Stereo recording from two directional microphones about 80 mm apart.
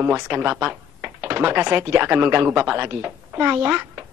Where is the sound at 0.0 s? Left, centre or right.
Right.